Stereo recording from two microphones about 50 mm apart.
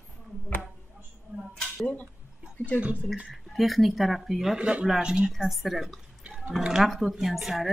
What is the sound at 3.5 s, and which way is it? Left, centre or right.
A woman's voice, centre.